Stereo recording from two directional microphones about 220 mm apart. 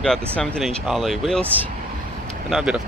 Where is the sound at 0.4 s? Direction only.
5° left (ahead or behind).